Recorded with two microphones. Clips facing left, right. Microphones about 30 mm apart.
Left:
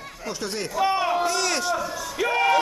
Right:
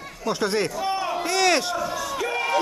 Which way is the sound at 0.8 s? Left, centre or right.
Centre.